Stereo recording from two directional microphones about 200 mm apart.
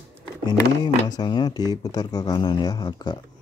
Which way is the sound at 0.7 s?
20° left (ahead or behind).